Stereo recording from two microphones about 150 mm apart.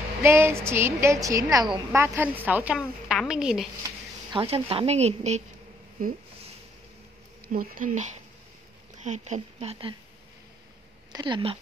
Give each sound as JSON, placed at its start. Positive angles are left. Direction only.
{"t": 0.2, "sound": "a woman's voice", "side_deg": -15}
{"t": 4.3, "sound": "speech", "side_deg": -35}
{"t": 7.4, "sound": "speech", "side_deg": -65}
{"t": 11.1, "sound": "speech", "side_deg": -30}